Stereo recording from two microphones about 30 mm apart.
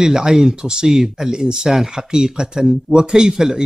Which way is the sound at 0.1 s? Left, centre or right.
Centre.